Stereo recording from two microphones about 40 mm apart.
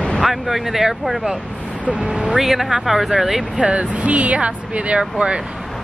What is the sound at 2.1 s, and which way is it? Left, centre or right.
Speech, right.